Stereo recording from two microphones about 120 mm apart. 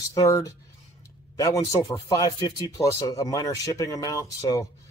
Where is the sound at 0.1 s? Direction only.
25° left (ahead or behind).